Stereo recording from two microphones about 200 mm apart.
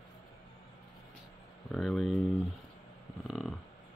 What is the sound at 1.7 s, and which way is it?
Speech, centre (ahead or behind).